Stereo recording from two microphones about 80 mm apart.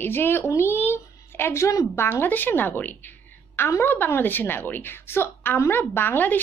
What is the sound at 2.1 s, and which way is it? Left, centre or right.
A woman's voice, left.